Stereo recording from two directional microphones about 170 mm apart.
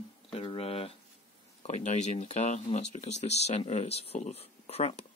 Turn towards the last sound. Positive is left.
turn(degrees=40)  # may be behind; listen again after turning